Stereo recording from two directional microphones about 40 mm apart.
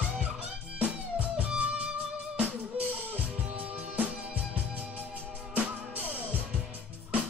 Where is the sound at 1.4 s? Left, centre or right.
Right.